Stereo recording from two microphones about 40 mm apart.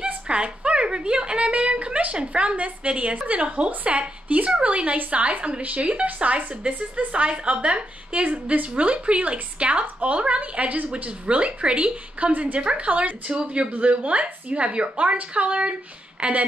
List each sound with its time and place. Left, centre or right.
0.0 s a woman's voice: right
8.7 s speech: right
12.3 s a woman's voice: right
12.5 s speech: right
13.3 s speech: right